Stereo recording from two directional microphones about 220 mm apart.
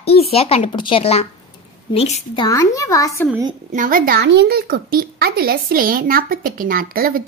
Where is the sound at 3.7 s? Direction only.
40° right (ahead or behind).